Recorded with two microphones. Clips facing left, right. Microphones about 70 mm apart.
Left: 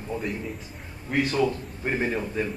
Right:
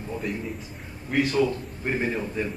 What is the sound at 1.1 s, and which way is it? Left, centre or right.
A man's voice, centre.